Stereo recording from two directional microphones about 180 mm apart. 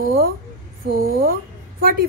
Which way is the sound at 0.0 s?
55° right (ahead or behind).